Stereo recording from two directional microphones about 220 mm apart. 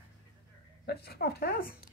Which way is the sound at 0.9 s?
45° left (ahead or behind).